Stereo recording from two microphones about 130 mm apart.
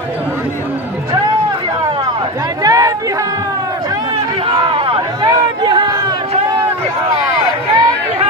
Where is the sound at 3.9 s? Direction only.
35° right (ahead or behind).